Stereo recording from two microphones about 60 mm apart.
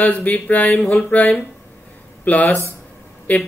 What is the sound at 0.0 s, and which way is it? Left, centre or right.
Speech, left.